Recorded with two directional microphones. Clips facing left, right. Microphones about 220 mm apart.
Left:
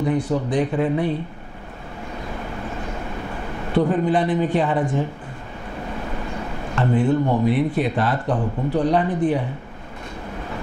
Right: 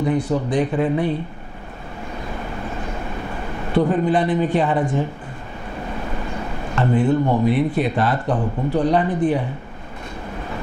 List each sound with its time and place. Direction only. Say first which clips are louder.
0.0 s a man's voice: right 1 dB; 15° right (ahead or behind)
2.3 s vehicle: right 1 dB; 20° right (ahead or behind)
3.6 s a man's voice: right 1 dB; 20° right (ahead or behind)
5.9 s a sound: right 1 dB; 20° right (ahead or behind)
7.4 s a man's voice: right 1 dB; 10° right (ahead or behind)